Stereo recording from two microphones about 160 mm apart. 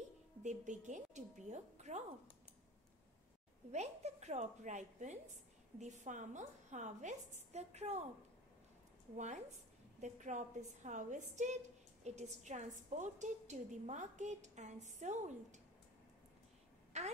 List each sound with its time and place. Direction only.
0.4 s a woman's voice: 50° right (ahead or behind)
3.7 s a woman's voice: 45° right (ahead or behind)
9.1 s a woman's voice: 50° right (ahead or behind)
16.9 s a woman's voice: 45° right (ahead or behind)